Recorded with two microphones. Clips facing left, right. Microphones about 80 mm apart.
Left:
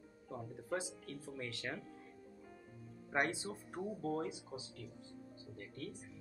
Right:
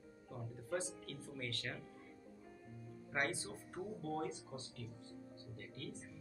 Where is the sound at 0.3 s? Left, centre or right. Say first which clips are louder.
Left 2 dB; centre.